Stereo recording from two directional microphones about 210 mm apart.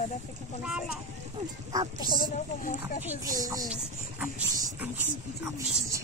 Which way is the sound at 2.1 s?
40° left (ahead or behind).